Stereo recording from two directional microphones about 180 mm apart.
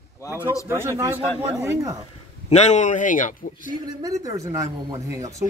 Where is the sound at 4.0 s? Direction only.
20° right (ahead or behind).